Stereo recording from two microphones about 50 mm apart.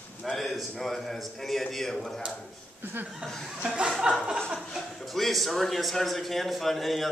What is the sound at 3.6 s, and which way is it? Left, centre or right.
Chuckle, right.